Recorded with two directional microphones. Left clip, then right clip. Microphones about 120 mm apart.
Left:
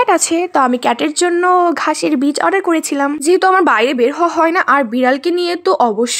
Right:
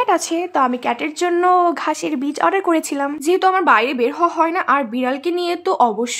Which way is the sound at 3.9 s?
40° left (ahead or behind).